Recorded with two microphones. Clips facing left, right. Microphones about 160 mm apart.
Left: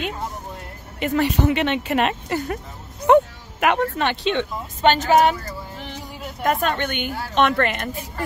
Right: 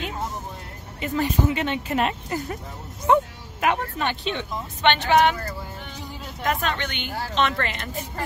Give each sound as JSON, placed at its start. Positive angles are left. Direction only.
{"t": 0.9, "sound": "speech", "side_deg": 70}
{"t": 4.8, "sound": "speech", "side_deg": 40}
{"t": 6.4, "sound": "speech", "side_deg": 50}